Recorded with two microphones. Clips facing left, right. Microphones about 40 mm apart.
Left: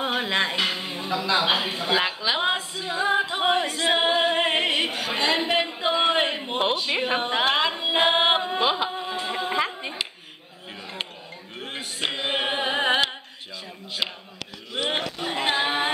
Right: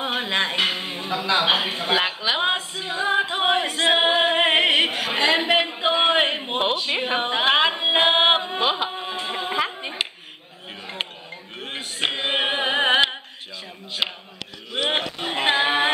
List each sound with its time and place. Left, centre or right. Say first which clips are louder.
0.0 s a woman's voice: even; centre
3.3 s singing: right 1 dB; right
3.7 s a capella: right 3 dB; right
6.6 s speech: even; centre
7.4 s tabla: right 4 dB; right
8.0 s chant: right 2 dB; right
8.5 s music: even; centre
9.1 s a sound: even; centre
11.6 s a sound: right 3 dB; centre
14.0 s speech: right 3 dB; right
14.7 s a sound: right 3 dB; right